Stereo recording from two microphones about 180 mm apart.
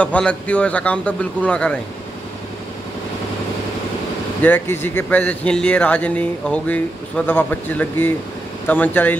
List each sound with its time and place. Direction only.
0.0 s a man's voice: 5° left (ahead or behind)
4.4 s a man's voice: 10° left (ahead or behind)